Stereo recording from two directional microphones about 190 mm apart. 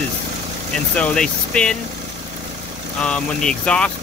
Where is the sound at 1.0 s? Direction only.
5° left (ahead or behind).